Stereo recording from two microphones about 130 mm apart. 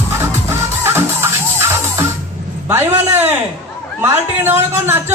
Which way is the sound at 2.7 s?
20° right (ahead or behind).